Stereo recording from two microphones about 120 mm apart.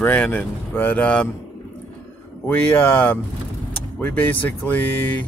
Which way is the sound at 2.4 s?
15° left (ahead or behind).